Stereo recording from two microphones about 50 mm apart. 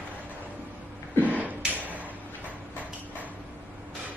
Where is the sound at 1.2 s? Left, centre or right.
Right.